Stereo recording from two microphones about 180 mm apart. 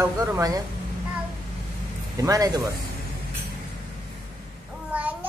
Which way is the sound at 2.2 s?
20° right (ahead or behind).